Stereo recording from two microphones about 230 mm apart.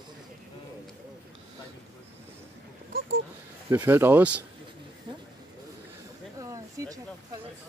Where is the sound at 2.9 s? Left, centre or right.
Right.